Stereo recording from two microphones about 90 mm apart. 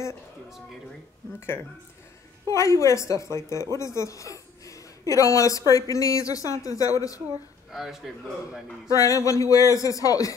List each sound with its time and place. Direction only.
2.5 s a woman's voice: 35° left (ahead or behind)
7.7 s a man's voice: 5° right (ahead or behind)
8.8 s a woman's voice: 40° left (ahead or behind)